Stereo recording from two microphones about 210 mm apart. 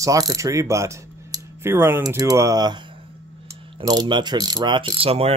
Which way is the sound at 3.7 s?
20° right (ahead or behind).